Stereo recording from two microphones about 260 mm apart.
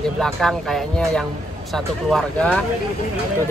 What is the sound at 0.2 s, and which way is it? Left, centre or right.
Speech, centre.